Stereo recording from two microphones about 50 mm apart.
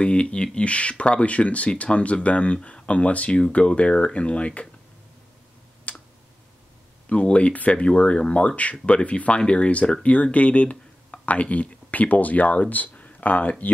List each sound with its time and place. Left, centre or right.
0.0 s speech: left
5.9 s clicking: left
7.1 s speech: left